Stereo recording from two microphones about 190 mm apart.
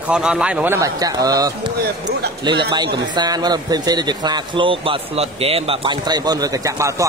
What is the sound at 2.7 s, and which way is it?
A man's voice, 25° right (ahead or behind).